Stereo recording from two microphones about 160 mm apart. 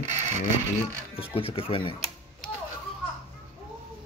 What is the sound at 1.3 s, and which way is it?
Speech, 35° left (ahead or behind).